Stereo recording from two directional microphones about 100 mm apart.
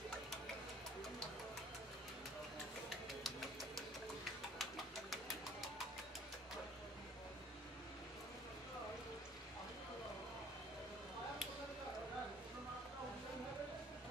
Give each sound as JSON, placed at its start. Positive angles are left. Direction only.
{"t": 3.3, "sound": "music", "side_deg": 0}